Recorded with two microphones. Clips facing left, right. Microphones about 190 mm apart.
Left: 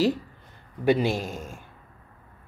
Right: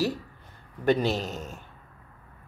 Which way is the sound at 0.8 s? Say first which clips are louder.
Left 2 dB; 10° left (ahead or behind).